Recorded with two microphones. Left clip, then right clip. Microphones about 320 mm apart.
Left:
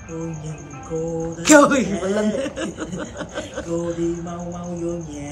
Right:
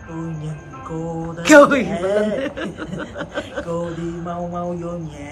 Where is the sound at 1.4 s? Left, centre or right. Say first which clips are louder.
Right 3 dB; centre.